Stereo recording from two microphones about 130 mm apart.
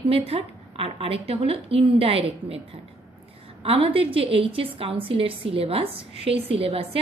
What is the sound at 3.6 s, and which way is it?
A woman's voice, 45° right (ahead or behind).